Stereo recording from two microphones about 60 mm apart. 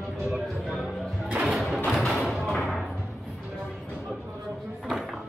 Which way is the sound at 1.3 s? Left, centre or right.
Centre.